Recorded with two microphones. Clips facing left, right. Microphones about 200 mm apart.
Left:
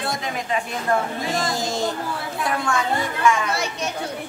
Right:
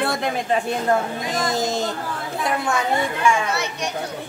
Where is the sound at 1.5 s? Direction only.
20° right (ahead or behind).